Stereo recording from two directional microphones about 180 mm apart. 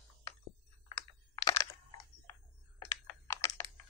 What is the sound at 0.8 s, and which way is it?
Computer keyboard, 20° left (ahead or behind).